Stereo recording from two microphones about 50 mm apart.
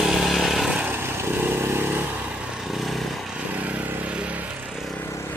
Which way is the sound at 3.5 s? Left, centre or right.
Right.